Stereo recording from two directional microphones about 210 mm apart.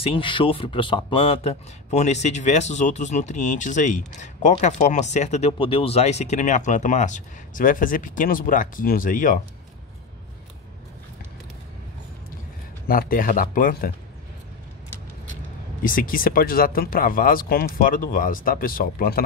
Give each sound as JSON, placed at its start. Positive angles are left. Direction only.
{"t": 0.0, "sound": "speech", "side_deg": 25}
{"t": 12.8, "sound": "speech", "side_deg": 45}
{"t": 15.8, "sound": "speech", "side_deg": 40}